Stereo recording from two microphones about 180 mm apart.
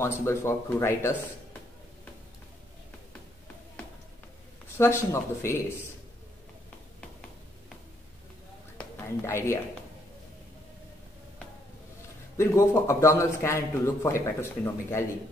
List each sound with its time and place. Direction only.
0.0 s a man's voice: 15° left (ahead or behind)
4.7 s a man's voice: 15° left (ahead or behind)
8.7 s whispering: 15° left (ahead or behind)
12.4 s a man's voice: 15° left (ahead or behind)